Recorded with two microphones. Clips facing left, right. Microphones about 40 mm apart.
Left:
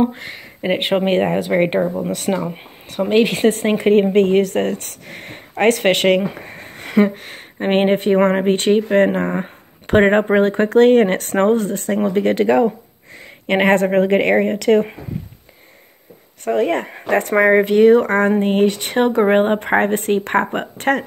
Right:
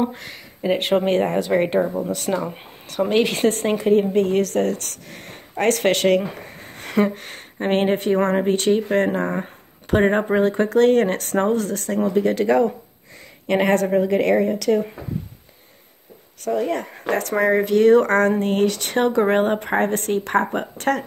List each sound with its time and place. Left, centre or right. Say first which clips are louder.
0.0 s speech: left 5 dB; left
1.8 s speech: left 2 dB; centre
3.8 s speech: left 4 dB; left
4.3 s speech: left 3 dB; left
6.8 s a sound: left 4 dB; centre
7.6 s speech: left 4 dB; left
12.1 s speech: left 2 dB; left
13.5 s speech: left 3 dB; left
16.4 s speech: left 5 dB; left
17.8 s speech: left 2 dB; centre; by 21.0 s left